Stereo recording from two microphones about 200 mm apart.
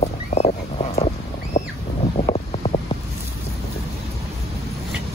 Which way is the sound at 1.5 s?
35° left (ahead or behind).